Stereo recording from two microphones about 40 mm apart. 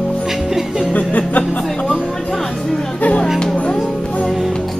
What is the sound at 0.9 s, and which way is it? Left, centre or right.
Music, left.